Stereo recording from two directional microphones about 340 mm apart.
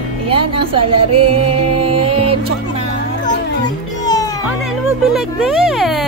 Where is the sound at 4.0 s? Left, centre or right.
Centre.